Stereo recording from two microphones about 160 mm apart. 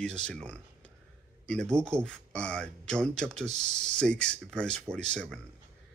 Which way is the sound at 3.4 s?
45° right (ahead or behind).